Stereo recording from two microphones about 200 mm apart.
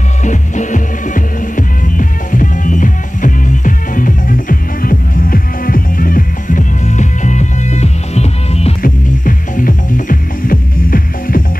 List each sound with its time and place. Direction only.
0.2 s music: 40° left (ahead or behind)
8.8 s music: 45° left (ahead or behind)